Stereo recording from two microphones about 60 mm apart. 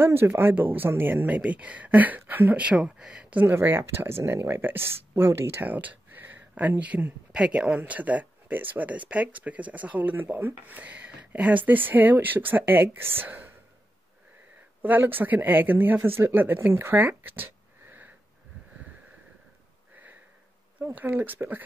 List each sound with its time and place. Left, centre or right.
0.0 s speech: right; by 3.3 s centre
3.3 s speech: right
3.5 s speech: right
5.7 s a sound: right
7.3 s speech: centre
10.2 s speech: right
10.6 s speech: right
14.8 s speech: right
20.9 s speech: right